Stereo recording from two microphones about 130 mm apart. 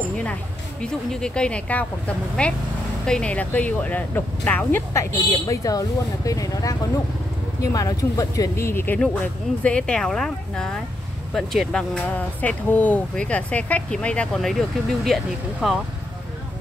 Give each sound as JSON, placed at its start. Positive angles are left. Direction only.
{"t": 0.2, "sound": "speech", "side_deg": 10}
{"t": 5.5, "sound": "speech", "side_deg": 30}